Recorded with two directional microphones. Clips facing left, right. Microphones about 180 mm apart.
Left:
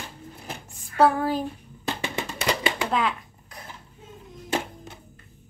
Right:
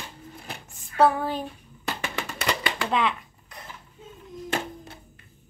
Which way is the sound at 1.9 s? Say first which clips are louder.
Left 2 dB; 25° left (ahead or behind).